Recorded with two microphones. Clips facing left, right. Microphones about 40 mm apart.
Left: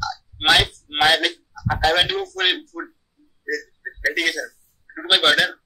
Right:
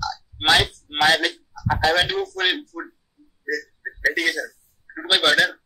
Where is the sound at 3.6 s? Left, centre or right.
Centre.